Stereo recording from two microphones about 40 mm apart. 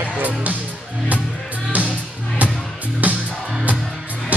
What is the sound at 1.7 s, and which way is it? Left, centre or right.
Music, right.